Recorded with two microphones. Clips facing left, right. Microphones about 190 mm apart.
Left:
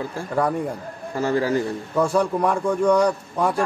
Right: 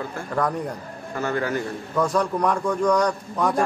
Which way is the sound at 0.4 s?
5° left (ahead or behind).